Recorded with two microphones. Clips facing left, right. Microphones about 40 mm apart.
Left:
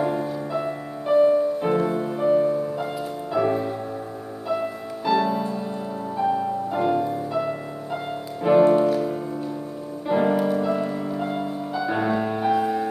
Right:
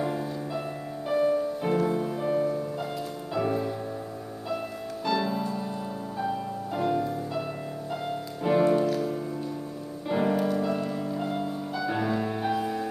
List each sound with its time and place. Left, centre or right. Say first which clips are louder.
0.0 s music: left 5 dB; centre
5.0 s music: left 6 dB; centre
8.5 s music: left 6 dB; centre